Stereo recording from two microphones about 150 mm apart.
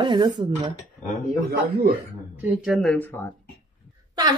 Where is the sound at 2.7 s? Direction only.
10° left (ahead or behind).